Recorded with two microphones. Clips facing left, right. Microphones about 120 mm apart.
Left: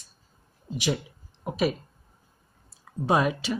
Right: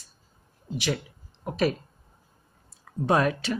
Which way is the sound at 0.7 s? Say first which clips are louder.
Left 1 dB; 15° left (ahead or behind).